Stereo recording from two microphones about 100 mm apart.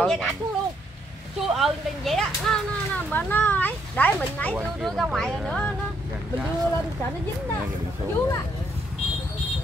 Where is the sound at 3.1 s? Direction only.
15° left (ahead or behind).